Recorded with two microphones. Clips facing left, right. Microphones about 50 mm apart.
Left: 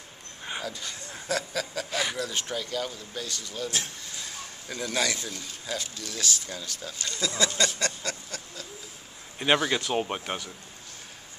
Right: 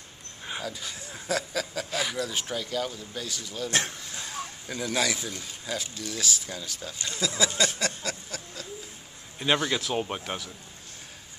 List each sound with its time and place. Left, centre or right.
0.5 s a man's voice: centre
7.2 s a sound: centre
9.4 s speech: centre